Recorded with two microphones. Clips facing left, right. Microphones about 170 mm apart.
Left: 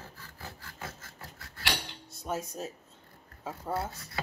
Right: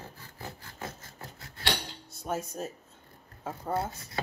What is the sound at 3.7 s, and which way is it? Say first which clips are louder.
Speech: right 3 dB; 25° right (ahead or behind).